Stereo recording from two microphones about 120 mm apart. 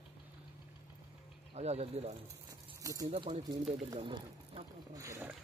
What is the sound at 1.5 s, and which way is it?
Speech, 65° right (ahead or behind).